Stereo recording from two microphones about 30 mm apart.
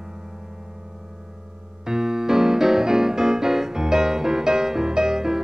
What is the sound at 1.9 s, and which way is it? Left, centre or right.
Music, right.